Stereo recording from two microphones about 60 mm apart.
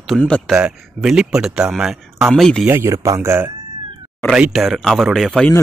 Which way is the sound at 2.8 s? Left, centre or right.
Right.